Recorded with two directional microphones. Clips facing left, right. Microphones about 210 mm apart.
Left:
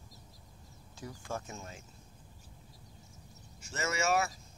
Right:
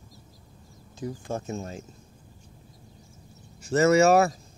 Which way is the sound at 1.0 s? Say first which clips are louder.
Right 8 dB; 25° right (ahead or behind).